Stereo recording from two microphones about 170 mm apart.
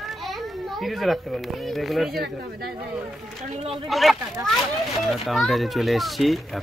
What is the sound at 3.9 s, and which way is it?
Speech, centre (ahead or behind).